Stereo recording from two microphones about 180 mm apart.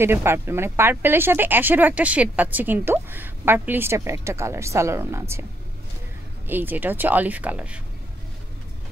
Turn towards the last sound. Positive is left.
turn(degrees=-10)  # may be behind; listen again after turning